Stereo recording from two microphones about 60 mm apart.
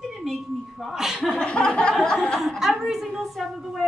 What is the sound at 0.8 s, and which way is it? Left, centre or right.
Speech, centre.